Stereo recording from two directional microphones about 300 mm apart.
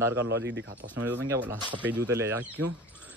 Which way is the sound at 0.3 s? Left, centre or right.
Right.